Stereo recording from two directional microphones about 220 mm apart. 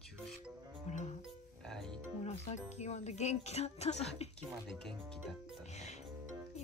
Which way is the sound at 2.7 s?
30° left (ahead or behind).